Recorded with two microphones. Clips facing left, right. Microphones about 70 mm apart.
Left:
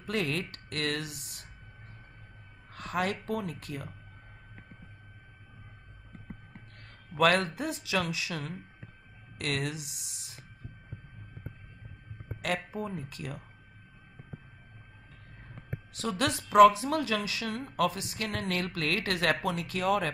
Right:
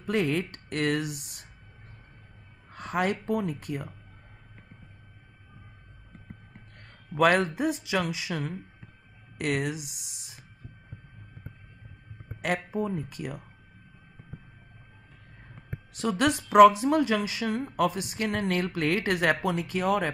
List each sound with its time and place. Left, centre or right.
0.0 s a woman's voice: centre
2.7 s a sound: right
3.3 s speech: centre
6.8 s speech: right
12.4 s a woman's voice: centre
16.0 s a woman's voice: centre